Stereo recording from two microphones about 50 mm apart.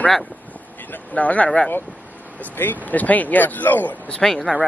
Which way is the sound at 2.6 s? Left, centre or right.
Left.